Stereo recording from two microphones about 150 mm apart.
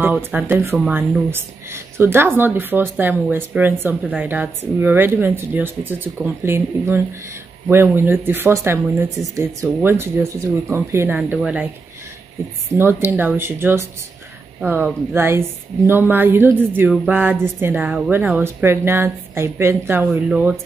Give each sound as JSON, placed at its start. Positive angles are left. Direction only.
{"t": 0.1, "sound": "speech", "side_deg": -10}
{"t": 11.1, "sound": "speech", "side_deg": -5}
{"t": 12.4, "sound": "speech", "side_deg": -20}
{"t": 16.9, "sound": "speech", "side_deg": 0}
{"t": 17.6, "sound": "speech", "side_deg": -15}
{"t": 20.2, "sound": "speech", "side_deg": -5}